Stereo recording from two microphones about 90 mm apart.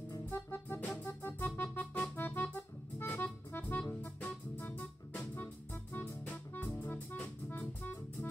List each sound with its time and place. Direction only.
0.3 s music: 25° left (ahead or behind)